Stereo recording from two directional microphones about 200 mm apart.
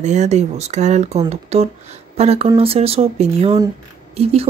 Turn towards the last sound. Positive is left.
turn(degrees=-30)  # may be behind; listen again after turning